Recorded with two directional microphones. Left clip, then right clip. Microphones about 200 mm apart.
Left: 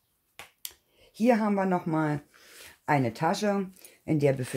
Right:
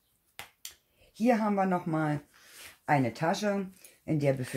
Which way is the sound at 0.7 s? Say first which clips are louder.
Even; 40° left (ahead or behind).